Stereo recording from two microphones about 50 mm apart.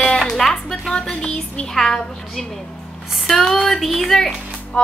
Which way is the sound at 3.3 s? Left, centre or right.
Centre.